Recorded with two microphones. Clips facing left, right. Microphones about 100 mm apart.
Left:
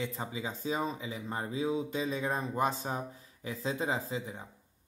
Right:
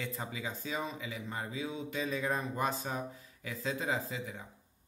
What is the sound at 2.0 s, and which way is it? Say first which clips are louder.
Speech: left 1 dB; 25° left (ahead or behind).